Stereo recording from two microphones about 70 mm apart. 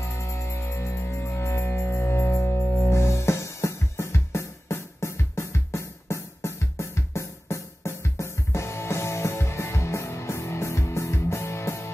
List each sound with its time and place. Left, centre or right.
0.0 s music: left